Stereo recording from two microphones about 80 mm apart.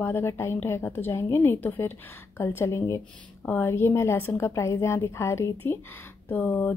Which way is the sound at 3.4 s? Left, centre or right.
Left.